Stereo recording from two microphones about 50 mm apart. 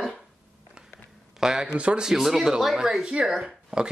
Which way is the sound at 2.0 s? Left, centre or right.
Centre.